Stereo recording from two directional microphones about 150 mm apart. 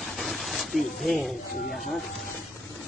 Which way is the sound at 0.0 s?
Centre (ahead or behind).